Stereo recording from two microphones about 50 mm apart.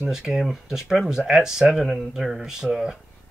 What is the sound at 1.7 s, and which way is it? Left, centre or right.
Speech, centre.